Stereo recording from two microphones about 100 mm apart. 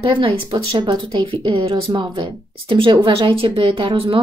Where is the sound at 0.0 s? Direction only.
55° right (ahead or behind).